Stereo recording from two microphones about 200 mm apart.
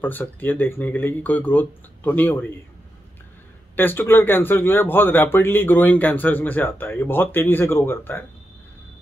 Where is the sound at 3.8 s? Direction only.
10° left (ahead or behind).